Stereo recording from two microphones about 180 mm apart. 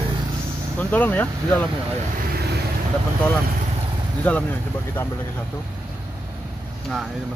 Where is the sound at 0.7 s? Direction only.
10° left (ahead or behind).